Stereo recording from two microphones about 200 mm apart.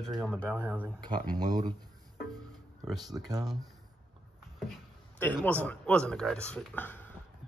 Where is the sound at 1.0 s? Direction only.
20° right (ahead or behind).